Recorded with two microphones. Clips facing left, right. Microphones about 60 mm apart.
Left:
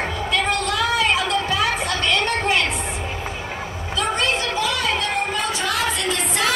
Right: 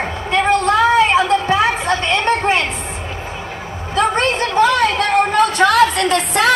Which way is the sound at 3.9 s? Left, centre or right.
Right.